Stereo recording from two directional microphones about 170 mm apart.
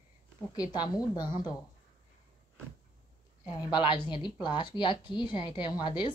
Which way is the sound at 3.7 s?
30° left (ahead or behind).